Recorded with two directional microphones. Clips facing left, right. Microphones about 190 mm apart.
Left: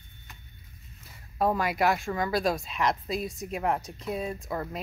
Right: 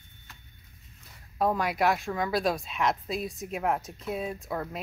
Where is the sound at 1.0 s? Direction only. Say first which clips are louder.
Left 1 dB; centre (ahead or behind).